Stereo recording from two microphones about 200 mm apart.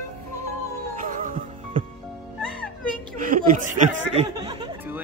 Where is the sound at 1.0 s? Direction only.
40° right (ahead or behind).